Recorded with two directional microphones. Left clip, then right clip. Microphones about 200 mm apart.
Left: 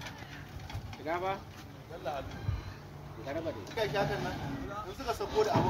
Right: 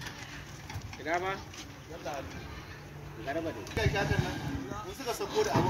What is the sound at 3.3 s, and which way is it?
Speech, 50° left (ahead or behind).